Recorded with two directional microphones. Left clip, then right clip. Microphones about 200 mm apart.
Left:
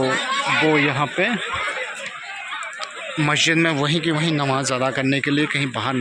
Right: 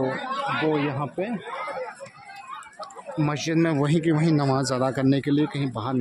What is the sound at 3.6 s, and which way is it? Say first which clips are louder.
Speech: left 3 dB; 15° right (ahead or behind).